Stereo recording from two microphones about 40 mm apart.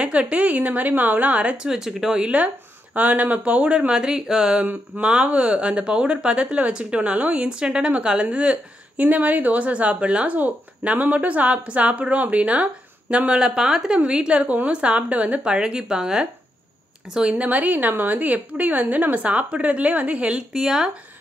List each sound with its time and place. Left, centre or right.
0.0 s speech: right
0.5 s speech: right
1.7 s speech: centre; by 3.9 s right
3.9 s speech: right
5.0 s speech: right
8.9 s speech: right
13.4 s speech: centre
17.5 s a woman's voice: right
20.2 s speech: centre